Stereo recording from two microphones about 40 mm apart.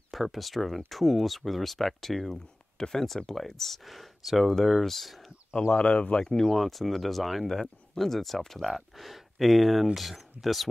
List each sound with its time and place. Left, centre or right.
0.1 s speech: centre
5.6 s speech: left
6.2 s speech: centre
6.5 s speech: centre